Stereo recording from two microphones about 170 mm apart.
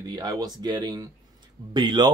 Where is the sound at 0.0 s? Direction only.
25° right (ahead or behind).